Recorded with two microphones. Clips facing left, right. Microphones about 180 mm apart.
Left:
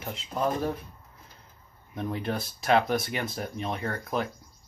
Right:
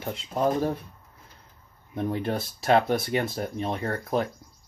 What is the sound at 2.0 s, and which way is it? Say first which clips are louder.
Speech: right 3 dB; 35° right (ahead or behind).